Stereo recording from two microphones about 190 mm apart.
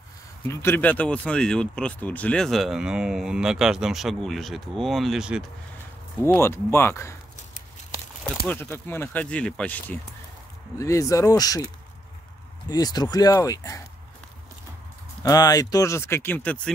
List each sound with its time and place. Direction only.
0.5 s speech: 10° left (ahead or behind); by 5.4 s 5° right (ahead or behind)
6.2 s speech: 15° left (ahead or behind)
8.5 s speech: 10° left (ahead or behind)
12.6 s speech: 20° left (ahead or behind)
15.2 s speech: 20° left (ahead or behind)